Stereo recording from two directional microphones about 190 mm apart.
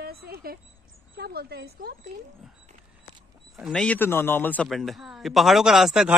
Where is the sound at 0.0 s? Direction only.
55° right (ahead or behind).